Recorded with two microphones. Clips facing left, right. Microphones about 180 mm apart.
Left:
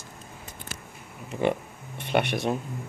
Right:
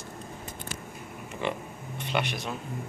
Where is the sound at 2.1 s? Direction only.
45° left (ahead or behind).